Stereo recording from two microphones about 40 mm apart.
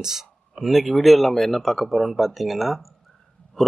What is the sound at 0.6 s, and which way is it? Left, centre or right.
Speech, centre.